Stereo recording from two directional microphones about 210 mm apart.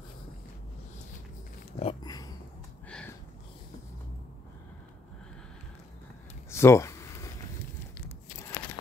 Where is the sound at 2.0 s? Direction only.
15° left (ahead or behind).